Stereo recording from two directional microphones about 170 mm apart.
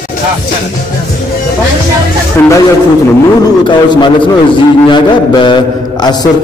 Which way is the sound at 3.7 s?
25° left (ahead or behind).